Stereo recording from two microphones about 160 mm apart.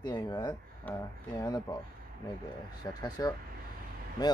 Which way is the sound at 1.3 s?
25° left (ahead or behind).